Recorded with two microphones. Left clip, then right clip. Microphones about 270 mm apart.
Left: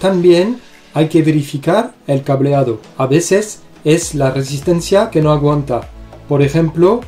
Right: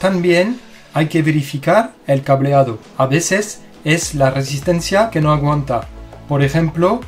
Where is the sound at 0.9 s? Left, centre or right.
Right.